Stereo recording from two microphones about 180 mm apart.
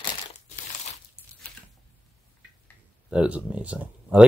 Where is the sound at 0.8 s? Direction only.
40° left (ahead or behind).